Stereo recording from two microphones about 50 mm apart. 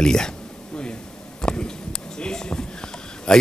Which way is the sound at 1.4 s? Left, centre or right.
Centre.